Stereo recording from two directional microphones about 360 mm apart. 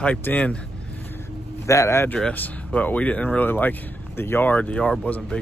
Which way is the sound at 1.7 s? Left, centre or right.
Centre.